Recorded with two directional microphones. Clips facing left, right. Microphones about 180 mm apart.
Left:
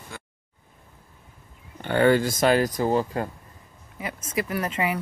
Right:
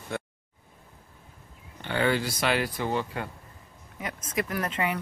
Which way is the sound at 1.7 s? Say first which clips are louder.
Left 7 dB; 50° left (ahead or behind).